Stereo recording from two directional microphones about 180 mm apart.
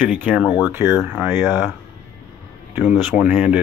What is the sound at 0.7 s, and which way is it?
Speech, 15° right (ahead or behind).